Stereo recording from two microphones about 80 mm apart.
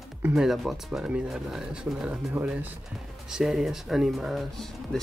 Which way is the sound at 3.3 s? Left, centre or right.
Centre.